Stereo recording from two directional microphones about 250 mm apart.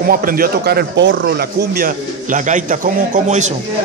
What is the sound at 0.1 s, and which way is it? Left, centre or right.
Speech, right.